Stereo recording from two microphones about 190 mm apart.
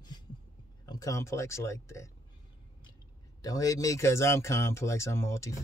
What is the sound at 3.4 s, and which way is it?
Speech, 20° left (ahead or behind).